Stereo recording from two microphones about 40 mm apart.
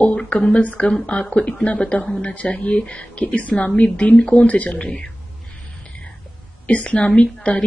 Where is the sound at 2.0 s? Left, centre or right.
Left.